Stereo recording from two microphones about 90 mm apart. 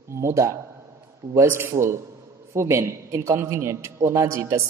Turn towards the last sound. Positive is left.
turn(degrees=-35)  # may be behind; listen again after turning